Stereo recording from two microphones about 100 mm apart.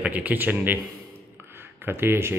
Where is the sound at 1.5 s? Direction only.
20° right (ahead or behind).